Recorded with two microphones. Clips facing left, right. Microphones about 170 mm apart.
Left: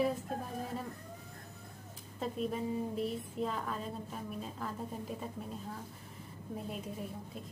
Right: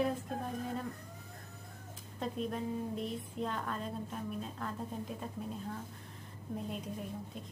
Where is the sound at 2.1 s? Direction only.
Centre (ahead or behind).